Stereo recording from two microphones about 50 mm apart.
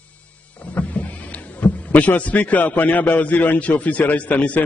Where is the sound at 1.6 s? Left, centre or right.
Left.